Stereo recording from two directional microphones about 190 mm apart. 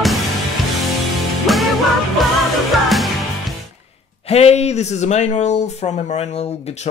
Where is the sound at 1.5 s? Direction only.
Centre (ahead or behind).